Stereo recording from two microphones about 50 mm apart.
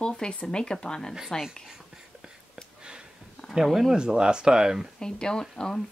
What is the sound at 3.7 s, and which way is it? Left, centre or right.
Speech, centre.